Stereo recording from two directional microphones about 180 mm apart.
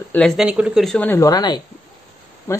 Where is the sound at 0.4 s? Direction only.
5° right (ahead or behind).